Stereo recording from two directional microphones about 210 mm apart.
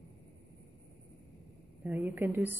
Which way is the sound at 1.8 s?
10° right (ahead or behind).